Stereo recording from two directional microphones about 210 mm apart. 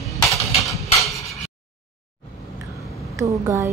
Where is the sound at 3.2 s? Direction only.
15° right (ahead or behind).